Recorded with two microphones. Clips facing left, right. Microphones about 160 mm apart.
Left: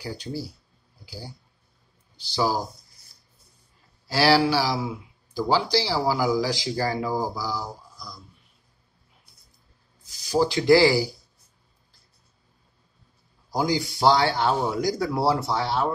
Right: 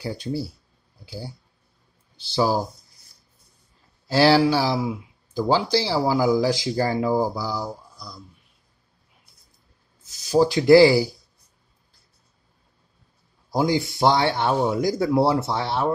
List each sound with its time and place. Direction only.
0.0 s speech: 25° right (ahead or behind)
2.3 s speech: 20° right (ahead or behind)
4.2 s speech: 20° right (ahead or behind)
10.0 s speech: 20° right (ahead or behind)
13.5 s speech: 25° right (ahead or behind)